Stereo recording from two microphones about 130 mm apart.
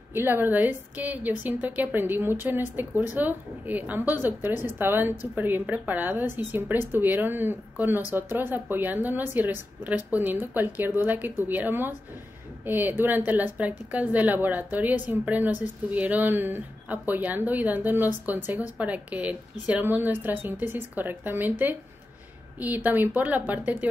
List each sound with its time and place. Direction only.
0.1 s a woman's voice: 15° right (ahead or behind)
22.8 s a woman's voice: 15° right (ahead or behind)